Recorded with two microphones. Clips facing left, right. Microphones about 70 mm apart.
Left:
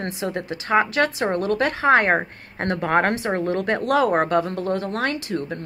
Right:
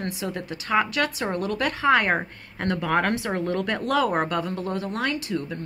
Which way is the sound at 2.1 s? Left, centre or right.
Left.